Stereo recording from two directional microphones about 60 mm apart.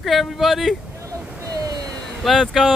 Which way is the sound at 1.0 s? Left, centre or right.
Right.